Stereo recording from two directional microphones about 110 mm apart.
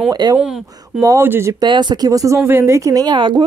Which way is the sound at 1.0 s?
25° right (ahead or behind).